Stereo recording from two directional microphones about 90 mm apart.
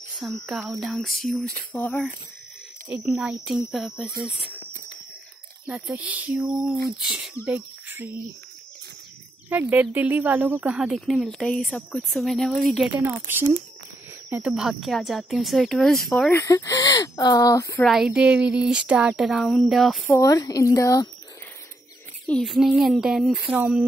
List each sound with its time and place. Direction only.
0.2 s speech: centre (ahead or behind)
1.8 s speech: 15° left (ahead or behind)
2.9 s speech: 5° right (ahead or behind)
5.9 s speech: 15° right (ahead or behind)
7.4 s speech: 20° right (ahead or behind)
9.5 s speech: 20° right (ahead or behind)
10.8 s speech: centre (ahead or behind)
13.0 s a woman's voice: 30° right (ahead or behind)
14.4 s speech: 5° right (ahead or behind)
16.3 s speech: 25° left (ahead or behind)
17.8 s speech: 5° right (ahead or behind)
20.2 s speech: 40° left (ahead or behind)
22.2 s speech: centre (ahead or behind)
23.4 s speech: 20° right (ahead or behind)